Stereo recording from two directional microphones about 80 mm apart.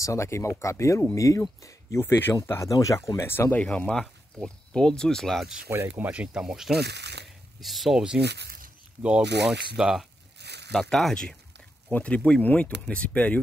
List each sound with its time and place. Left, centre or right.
0.0 s speech: left
2.0 s speech: left
3.5 s speech: centre
5.9 s speech: centre
7.2 s a sound: centre
9.4 s speech: centre
11.9 s speech: centre